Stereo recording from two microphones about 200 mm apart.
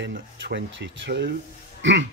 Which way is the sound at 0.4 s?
65° right (ahead or behind).